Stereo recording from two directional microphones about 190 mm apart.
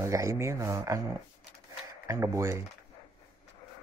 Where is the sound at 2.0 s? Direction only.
15° right (ahead or behind).